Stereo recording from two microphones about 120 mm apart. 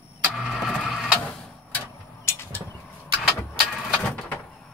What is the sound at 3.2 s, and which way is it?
Vehicle, centre (ahead or behind).